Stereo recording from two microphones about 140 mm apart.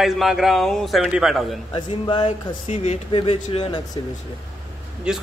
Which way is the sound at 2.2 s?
60° left (ahead or behind).